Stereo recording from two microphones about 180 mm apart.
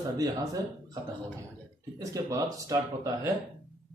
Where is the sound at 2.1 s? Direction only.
20° right (ahead or behind).